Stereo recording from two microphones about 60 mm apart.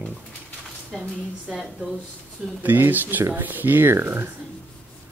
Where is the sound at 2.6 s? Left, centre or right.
Right.